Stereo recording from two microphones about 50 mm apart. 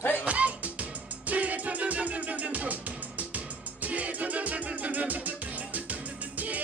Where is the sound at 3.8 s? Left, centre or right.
Right.